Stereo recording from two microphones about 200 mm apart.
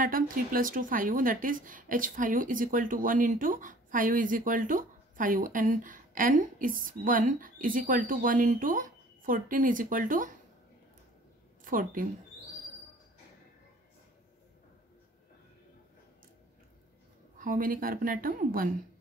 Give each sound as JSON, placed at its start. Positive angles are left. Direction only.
{"t": 0.0, "sound": "a woman's voice", "side_deg": -45}
{"t": 11.6, "sound": "a woman's voice", "side_deg": -45}
{"t": 17.4, "sound": "a woman's voice", "side_deg": -45}